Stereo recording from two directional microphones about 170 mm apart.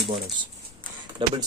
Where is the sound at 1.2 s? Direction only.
30° right (ahead or behind).